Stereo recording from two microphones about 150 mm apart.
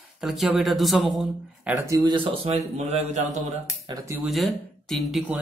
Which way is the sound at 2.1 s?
35° right (ahead or behind).